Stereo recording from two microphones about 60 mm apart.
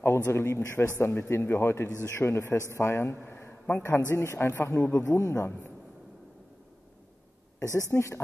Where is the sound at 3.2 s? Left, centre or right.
Left.